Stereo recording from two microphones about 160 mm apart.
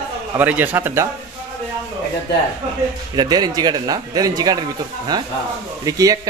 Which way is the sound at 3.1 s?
25° right (ahead or behind).